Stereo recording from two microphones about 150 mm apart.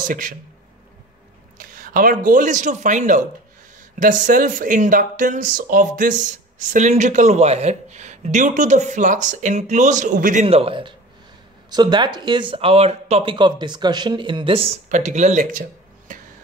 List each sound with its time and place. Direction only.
0.0 s speech: 65° right (ahead or behind)
1.6 s speech: 70° right (ahead or behind); by 15.6 s 50° right (ahead or behind)